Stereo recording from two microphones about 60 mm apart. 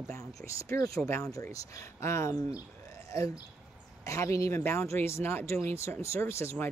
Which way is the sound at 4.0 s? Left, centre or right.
Left.